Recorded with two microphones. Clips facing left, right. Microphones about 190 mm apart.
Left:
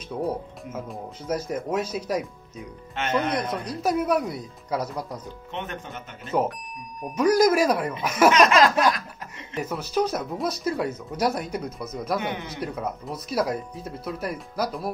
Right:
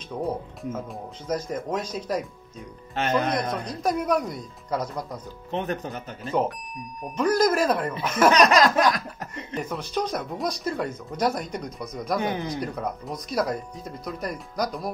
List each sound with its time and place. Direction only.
0.1 s speech: 5° left (ahead or behind)
3.0 s speech: 35° right (ahead or behind)
3.3 s speech: 10° left (ahead or behind)
5.5 s speech: 35° right (ahead or behind)
7.0 s speech: 5° left (ahead or behind)
8.3 s laughter: 40° right (ahead or behind)
9.5 s speech: 5° left (ahead or behind)
12.2 s speech: 35° right (ahead or behind)
12.6 s speech: 5° left (ahead or behind)